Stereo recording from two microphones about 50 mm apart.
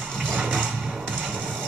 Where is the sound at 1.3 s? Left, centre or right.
Centre.